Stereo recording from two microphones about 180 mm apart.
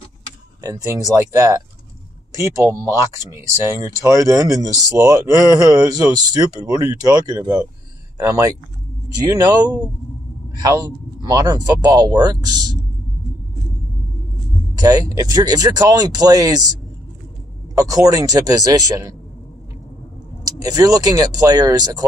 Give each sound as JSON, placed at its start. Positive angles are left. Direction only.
{"t": 0.6, "sound": "speech", "side_deg": -15}
{"t": 14.8, "sound": "speech", "side_deg": -20}
{"t": 17.7, "sound": "speech", "side_deg": -20}
{"t": 20.4, "sound": "speech", "side_deg": -20}